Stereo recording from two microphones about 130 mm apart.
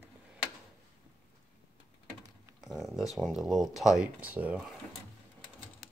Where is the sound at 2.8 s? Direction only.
Centre (ahead or behind).